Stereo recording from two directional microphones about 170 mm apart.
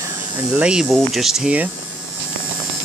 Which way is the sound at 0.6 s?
5° right (ahead or behind).